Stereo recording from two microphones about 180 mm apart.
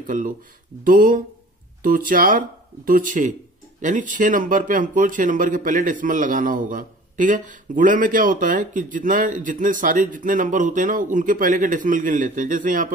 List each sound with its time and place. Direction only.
0.0 s speech: 45° right (ahead or behind)